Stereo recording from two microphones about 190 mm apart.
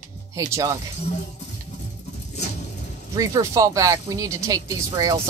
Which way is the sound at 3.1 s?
15° right (ahead or behind).